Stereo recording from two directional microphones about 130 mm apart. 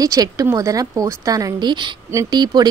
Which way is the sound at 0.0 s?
25° right (ahead or behind).